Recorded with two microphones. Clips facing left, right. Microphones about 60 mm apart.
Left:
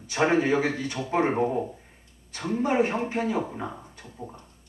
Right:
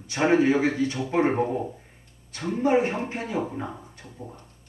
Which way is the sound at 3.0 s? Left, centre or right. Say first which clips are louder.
Left 2 dB; centre.